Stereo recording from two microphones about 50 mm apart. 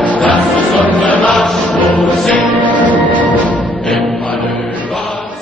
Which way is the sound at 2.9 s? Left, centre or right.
Left.